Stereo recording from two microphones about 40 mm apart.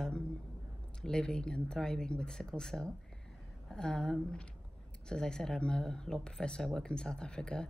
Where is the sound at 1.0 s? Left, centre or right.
Centre.